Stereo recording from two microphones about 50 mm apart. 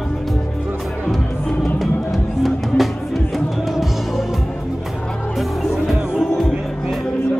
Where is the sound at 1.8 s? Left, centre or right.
Centre.